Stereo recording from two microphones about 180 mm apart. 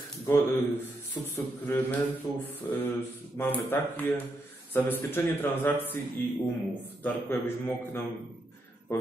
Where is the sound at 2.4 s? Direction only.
10° left (ahead or behind).